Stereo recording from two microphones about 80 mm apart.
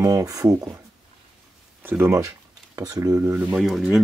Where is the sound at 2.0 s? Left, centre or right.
Right.